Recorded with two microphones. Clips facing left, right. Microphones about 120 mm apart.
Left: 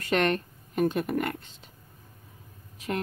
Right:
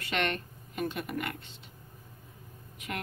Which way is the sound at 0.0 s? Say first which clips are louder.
Left 7 dB; 40° left (ahead or behind).